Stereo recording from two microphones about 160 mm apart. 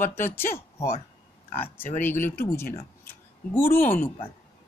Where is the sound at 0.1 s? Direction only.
15° left (ahead or behind).